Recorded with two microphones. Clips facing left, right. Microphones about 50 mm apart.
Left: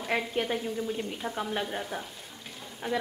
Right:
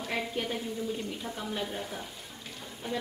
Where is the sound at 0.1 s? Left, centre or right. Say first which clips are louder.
Left 5 dB; left.